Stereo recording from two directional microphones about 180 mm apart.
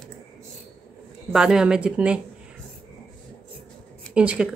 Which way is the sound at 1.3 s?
5° right (ahead or behind).